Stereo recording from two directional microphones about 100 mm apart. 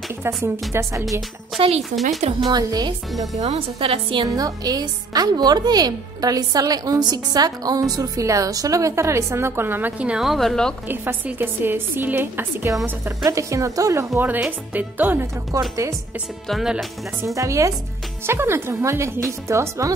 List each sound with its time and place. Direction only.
0.4 s a woman's voice: 30° right (ahead or behind)
1.8 s speech: centre (ahead or behind)
2.4 s speech: 45° right (ahead or behind)
3.3 s a woman's voice: 80° right; by 4.3 s 65° right (ahead or behind)
4.3 s a woman's voice: 35° right (ahead or behind); by 10.7 s 5° left (ahead or behind)
10.9 s a woman's voice: 20° right (ahead or behind)
13.2 s a woman's voice: 30° right (ahead or behind)
14.7 s speech: 15° right (ahead or behind)
15.5 s a woman's voice: 35° right (ahead or behind)
16.4 s speech: 5° right (ahead or behind)
17.2 s a woman's voice: 30° right (ahead or behind)